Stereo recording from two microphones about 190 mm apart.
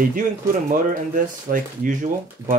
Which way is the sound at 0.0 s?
45° right (ahead or behind).